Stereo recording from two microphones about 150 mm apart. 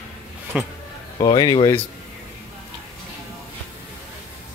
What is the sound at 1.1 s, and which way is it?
Speech, 30° left (ahead or behind).